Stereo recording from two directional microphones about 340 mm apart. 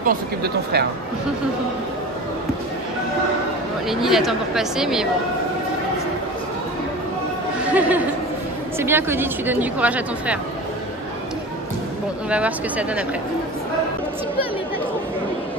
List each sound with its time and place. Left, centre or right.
0.0 s speech: right
3.9 s speech: centre
7.6 s speech: centre
12.3 s speech: centre